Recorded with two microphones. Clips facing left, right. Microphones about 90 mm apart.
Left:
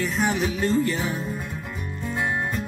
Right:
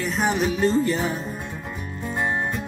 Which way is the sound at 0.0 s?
15° right (ahead or behind).